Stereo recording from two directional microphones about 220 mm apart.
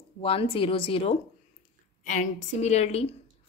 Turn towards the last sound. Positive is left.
turn(degrees=30)  # may be behind; listen again after turning